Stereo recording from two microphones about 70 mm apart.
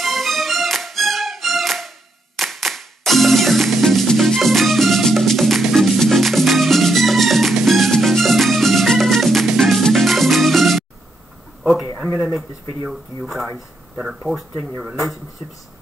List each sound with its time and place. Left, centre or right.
0.0 s music: centre
11.6 s a sound: centre
12.9 s speech: centre